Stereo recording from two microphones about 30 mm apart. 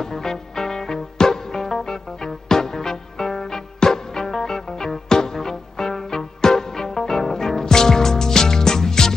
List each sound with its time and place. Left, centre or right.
0.0 s music: centre